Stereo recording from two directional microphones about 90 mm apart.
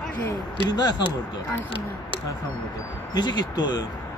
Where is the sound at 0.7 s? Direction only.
50° left (ahead or behind).